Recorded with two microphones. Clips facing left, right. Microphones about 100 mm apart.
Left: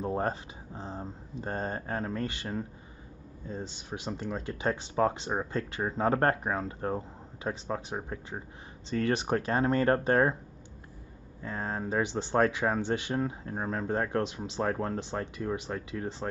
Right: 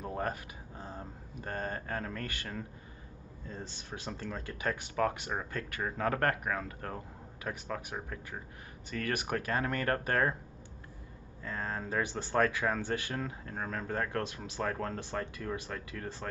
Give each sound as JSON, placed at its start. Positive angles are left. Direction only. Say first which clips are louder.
{"t": 0.0, "sound": "speech", "louder": "left 5 dB", "side_deg": 30}
{"t": 11.4, "sound": "speech", "louder": "left 3 dB", "side_deg": 20}